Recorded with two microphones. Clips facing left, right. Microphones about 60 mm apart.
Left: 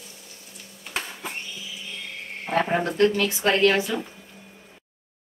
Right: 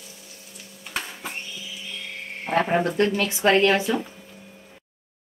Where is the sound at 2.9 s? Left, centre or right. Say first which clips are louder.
Left 2 dB; centre.